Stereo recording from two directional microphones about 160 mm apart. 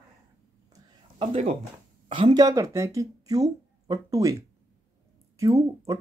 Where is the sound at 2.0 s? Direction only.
30° right (ahead or behind).